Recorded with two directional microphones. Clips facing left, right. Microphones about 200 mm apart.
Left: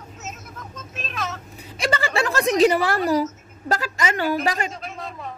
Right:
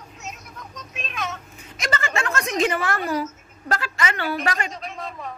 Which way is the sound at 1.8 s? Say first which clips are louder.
Left 4 dB; 35° left (ahead or behind).